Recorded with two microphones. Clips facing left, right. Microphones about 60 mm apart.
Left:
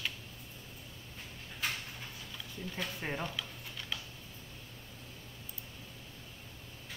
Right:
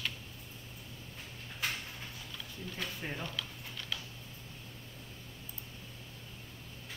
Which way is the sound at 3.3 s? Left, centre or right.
Centre.